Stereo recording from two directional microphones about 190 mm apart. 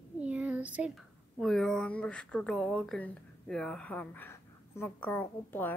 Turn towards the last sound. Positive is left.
turn(degrees=10)  # may be behind; listen again after turning